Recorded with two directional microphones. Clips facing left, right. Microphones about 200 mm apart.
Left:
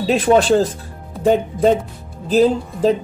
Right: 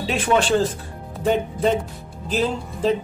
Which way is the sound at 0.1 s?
35° left (ahead or behind).